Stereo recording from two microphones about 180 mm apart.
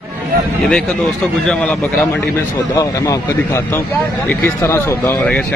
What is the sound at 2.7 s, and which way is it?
A man's voice, 20° left (ahead or behind).